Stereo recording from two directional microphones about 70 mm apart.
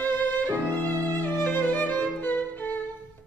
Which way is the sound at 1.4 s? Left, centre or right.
Left.